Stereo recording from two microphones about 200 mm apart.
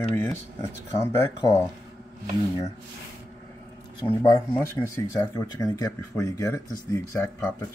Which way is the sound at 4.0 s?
20° left (ahead or behind).